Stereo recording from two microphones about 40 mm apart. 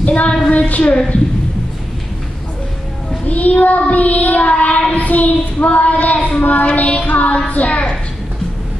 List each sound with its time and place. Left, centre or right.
0.0 s a woman's voice: left
1.1 s child singing: left
3.3 s child singing: left